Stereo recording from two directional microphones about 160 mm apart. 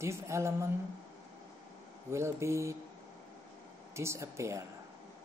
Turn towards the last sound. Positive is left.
turn(degrees=-20)  # may be behind; listen again after turning